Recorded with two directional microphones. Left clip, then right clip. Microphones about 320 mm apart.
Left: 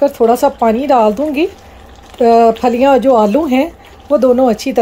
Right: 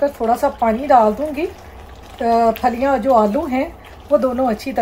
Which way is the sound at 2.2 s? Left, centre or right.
Left.